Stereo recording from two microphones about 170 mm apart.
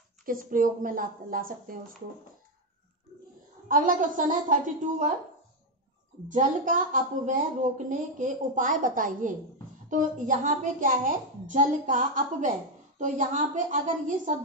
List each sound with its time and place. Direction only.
0.2 s a woman's voice: 55° right (ahead or behind)
3.6 s a woman's voice: 55° right (ahead or behind)
6.3 s a woman's voice: 50° right (ahead or behind)